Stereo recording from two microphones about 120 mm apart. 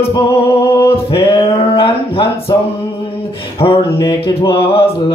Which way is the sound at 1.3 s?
50° left (ahead or behind).